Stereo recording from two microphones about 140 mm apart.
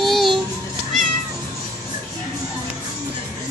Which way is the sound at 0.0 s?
Centre (ahead or behind).